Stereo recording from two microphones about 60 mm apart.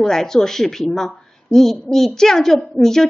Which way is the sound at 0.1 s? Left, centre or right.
Centre.